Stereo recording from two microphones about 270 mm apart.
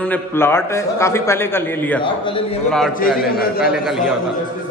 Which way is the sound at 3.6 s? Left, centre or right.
Centre.